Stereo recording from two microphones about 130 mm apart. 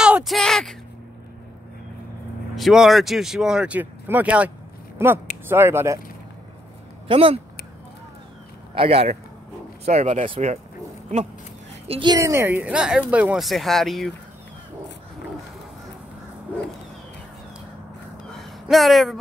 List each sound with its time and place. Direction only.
0.0 s a sound: 5° right (ahead or behind)
2.5 s a woman's voice: centre (ahead or behind); by 5.9 s 20° right (ahead or behind)
7.1 s speech: 45° right (ahead or behind)
8.7 s speech: 45° right (ahead or behind); by 10.3 s 65° right (ahead or behind)
11.9 s a woman's voice: 35° right (ahead or behind)
12.2 s a woman's voice: 20° right (ahead or behind); by 14.1 s centre (ahead or behind)
18.4 s a sound: centre (ahead or behind)